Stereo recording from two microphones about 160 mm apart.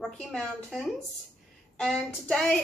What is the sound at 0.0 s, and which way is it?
A woman's voice, 5° left (ahead or behind).